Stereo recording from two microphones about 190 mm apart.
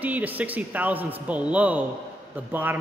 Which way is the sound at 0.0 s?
10° right (ahead or behind).